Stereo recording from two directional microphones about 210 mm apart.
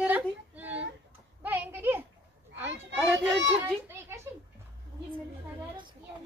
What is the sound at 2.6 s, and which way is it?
Children playing, 10° right (ahead or behind).